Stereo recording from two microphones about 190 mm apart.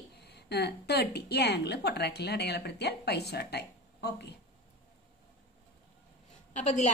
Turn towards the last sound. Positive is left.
turn(degrees=35)  # may be behind; listen again after turning